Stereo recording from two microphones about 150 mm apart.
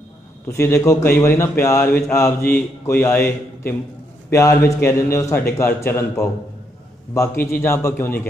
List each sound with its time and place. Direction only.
0.5 s a man's voice: 20° left (ahead or behind)
7.6 s a man's voice: 15° left (ahead or behind)